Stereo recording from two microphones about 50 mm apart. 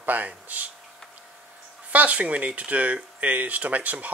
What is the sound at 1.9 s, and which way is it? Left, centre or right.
Speech, right.